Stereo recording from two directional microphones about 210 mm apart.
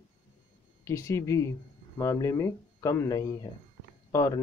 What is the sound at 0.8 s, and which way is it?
Speech, 15° left (ahead or behind).